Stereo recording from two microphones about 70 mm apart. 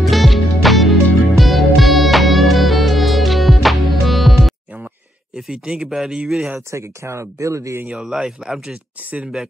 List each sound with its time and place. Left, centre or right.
0.0 s music: centre
5.3 s speech: centre
6.7 s speech: right
8.0 s speech: centre